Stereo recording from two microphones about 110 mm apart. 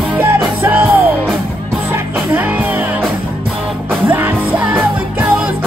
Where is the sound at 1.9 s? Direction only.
15° right (ahead or behind).